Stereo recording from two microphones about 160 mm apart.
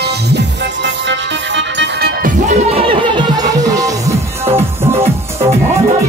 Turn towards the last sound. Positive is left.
turn(degrees=-15)  # may be behind; listen again after turning